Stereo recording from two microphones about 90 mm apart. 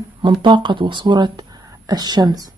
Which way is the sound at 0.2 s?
65° right (ahead or behind).